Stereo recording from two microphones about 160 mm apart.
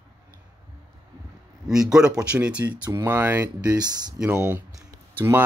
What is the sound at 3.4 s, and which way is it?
Speech, 25° right (ahead or behind).